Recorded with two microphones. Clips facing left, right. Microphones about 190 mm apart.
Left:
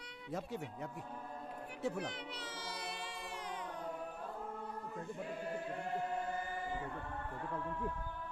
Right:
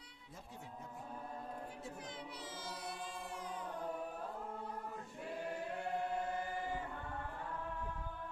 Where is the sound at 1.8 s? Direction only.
75° left (ahead or behind).